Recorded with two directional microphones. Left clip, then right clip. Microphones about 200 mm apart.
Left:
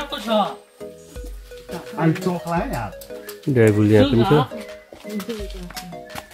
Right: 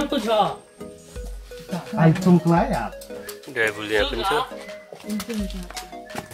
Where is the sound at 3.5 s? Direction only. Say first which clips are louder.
Left 7 dB; 50° right (ahead or behind).